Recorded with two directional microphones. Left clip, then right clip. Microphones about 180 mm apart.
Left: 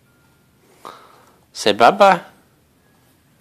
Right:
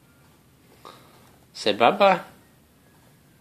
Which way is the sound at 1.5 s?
40° left (ahead or behind).